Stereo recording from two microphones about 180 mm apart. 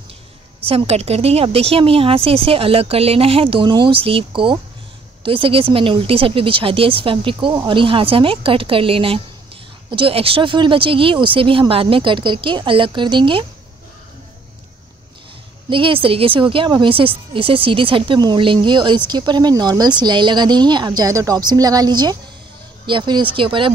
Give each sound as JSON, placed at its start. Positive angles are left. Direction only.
{"t": 0.7, "sound": "a woman's voice", "side_deg": -35}
{"t": 15.7, "sound": "a woman's voice", "side_deg": -30}